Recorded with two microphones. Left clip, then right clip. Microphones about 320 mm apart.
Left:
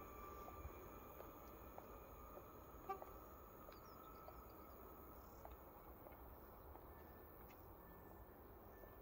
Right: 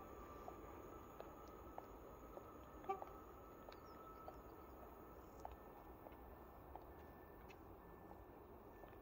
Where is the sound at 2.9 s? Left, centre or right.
Right.